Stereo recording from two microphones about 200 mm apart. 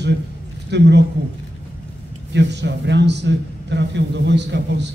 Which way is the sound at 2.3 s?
60° right (ahead or behind).